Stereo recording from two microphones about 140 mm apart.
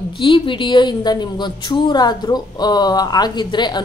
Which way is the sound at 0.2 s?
35° left (ahead or behind).